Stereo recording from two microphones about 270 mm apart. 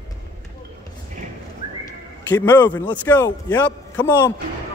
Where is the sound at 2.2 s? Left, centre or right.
Centre.